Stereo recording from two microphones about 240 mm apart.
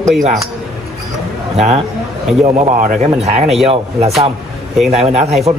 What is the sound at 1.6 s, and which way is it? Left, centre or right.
A man's voice, right.